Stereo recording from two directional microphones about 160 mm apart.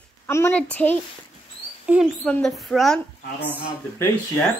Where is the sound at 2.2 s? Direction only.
5° left (ahead or behind).